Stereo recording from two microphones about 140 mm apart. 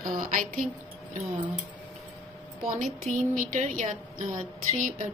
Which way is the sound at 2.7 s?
70° right (ahead or behind).